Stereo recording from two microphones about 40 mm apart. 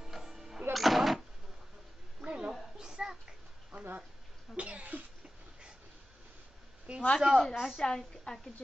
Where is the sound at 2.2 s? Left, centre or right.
Right.